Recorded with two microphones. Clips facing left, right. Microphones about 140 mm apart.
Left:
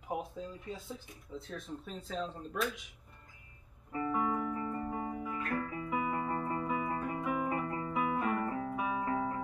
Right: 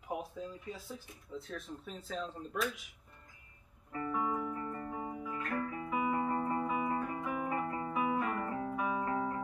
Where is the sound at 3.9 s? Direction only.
10° left (ahead or behind).